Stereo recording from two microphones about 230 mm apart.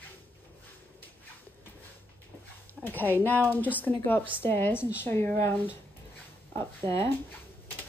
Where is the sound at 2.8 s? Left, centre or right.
Centre.